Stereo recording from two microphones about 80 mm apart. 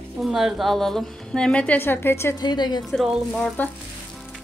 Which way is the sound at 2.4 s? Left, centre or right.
Left.